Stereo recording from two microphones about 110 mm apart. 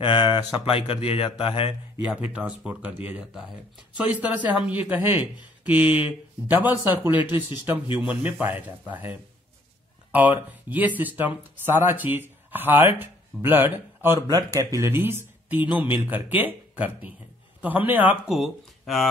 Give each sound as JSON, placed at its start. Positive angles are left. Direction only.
{"t": 0.0, "sound": "speech", "side_deg": 45}
{"t": 0.7, "sound": "speech", "side_deg": 55}
{"t": 2.0, "sound": "a man's voice", "side_deg": -10}
{"t": 18.3, "sound": "speech", "side_deg": 0}